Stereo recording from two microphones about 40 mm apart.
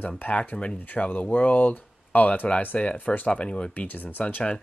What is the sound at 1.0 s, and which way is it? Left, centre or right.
A man's voice, left.